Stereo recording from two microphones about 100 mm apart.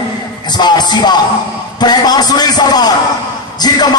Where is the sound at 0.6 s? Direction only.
45° left (ahead or behind).